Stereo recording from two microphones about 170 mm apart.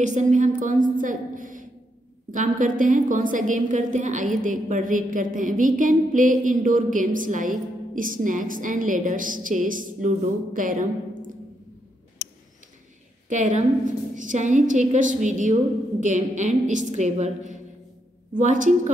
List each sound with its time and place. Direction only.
0.0 s a woman's voice: 45° right (ahead or behind)
13.3 s a woman's voice: 45° right (ahead or behind)